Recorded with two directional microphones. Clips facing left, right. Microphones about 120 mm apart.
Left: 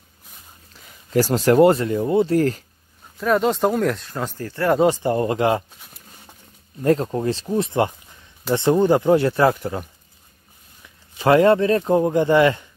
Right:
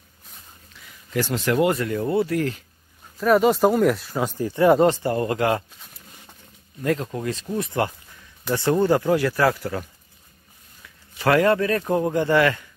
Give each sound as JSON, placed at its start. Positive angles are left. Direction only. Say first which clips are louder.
{"t": 0.8, "sound": "speech", "louder": "left 6 dB", "side_deg": 35}
{"t": 2.3, "sound": "speech", "louder": "left 5 dB", "side_deg": 40}
{"t": 3.2, "sound": "speech", "louder": "right 2 dB", "side_deg": -5}
{"t": 4.8, "sound": "a man's voice", "louder": "left 1 dB", "side_deg": 15}
{"t": 5.1, "sound": "a man's voice", "louder": "left 3 dB", "side_deg": 25}
{"t": 6.8, "sound": "a man's voice", "louder": "left 5 dB", "side_deg": 30}
{"t": 11.1, "sound": "a man's voice", "louder": "left 4 dB", "side_deg": 25}